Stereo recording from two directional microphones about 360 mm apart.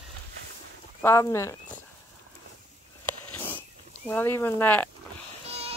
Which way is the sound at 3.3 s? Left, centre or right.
Centre.